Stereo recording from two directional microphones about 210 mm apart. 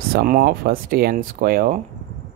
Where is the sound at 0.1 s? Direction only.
45° right (ahead or behind).